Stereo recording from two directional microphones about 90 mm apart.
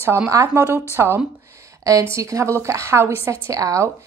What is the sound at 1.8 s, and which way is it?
A woman's voice, 40° right (ahead or behind).